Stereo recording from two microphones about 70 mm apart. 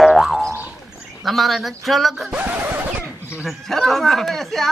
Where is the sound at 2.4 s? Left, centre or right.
Right.